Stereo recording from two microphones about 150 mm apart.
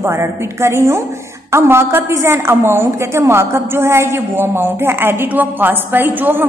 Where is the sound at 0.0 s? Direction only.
15° right (ahead or behind).